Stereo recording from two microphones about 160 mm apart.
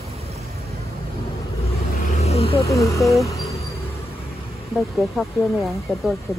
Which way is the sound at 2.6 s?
20° left (ahead or behind).